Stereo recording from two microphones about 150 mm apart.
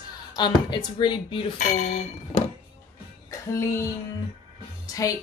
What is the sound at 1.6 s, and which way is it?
Speech, 50° left (ahead or behind).